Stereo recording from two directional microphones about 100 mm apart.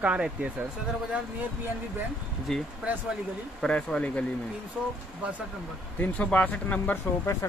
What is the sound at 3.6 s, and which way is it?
Speech, 5° left (ahead or behind).